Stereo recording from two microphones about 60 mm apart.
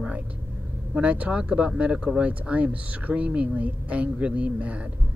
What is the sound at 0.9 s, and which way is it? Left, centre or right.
Speech, right.